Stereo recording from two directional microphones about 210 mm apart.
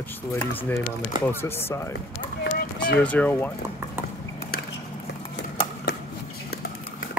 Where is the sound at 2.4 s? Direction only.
45° left (ahead or behind).